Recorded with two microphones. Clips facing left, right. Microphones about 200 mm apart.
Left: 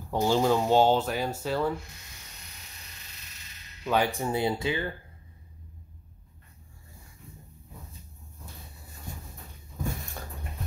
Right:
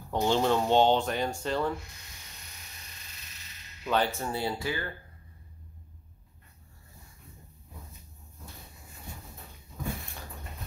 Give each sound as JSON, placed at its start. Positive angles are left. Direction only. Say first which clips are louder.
{"t": 0.1, "sound": "speech", "louder": "left 2 dB", "side_deg": 10}
{"t": 3.8, "sound": "speech", "louder": "left 2 dB", "side_deg": 10}